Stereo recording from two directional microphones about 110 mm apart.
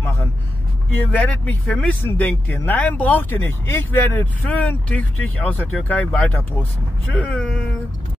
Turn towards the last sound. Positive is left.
turn(degrees=10)  # may be behind; listen again after turning